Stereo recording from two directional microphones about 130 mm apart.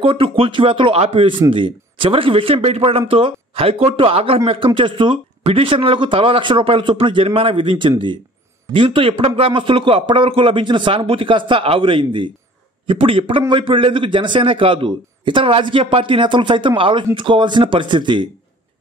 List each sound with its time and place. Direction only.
0.0 s a man's voice: 45° right (ahead or behind)